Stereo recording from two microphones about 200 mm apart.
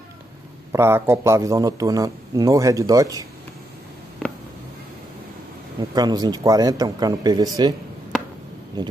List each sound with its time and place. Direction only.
0.7 s a man's voice: 10° right (ahead or behind)
5.9 s speech: 20° right (ahead or behind)
8.8 s speech: 20° right (ahead or behind)